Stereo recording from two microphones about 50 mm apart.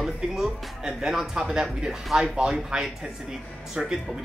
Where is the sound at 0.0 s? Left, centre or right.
Centre.